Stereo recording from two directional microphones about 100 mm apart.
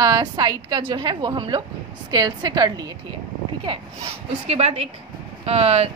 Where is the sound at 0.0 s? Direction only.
40° right (ahead or behind).